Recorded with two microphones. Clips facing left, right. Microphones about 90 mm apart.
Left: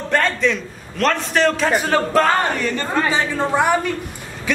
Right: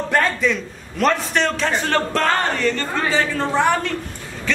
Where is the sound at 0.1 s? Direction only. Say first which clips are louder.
Left 1 dB; 5° right (ahead or behind).